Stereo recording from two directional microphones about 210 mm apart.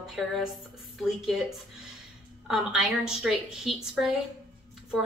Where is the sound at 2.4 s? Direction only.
5° right (ahead or behind).